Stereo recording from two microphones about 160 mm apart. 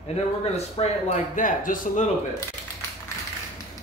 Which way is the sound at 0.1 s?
40° left (ahead or behind).